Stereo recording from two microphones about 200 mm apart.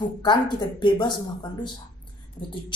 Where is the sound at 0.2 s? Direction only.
20° left (ahead or behind).